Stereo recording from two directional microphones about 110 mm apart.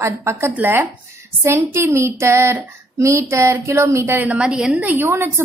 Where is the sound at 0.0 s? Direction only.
25° right (ahead or behind); by 4.7 s 5° right (ahead or behind).